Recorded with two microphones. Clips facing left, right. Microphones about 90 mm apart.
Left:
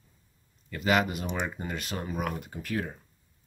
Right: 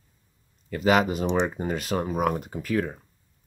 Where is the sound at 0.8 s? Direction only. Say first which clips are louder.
Right 5 dB; 40° right (ahead or behind).